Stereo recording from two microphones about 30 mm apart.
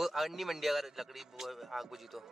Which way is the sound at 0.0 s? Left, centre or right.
Centre.